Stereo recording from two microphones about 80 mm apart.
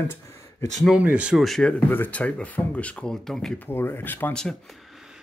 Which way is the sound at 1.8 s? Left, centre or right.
Left.